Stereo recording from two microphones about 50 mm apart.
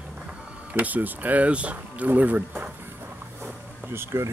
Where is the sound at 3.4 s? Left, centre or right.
Right.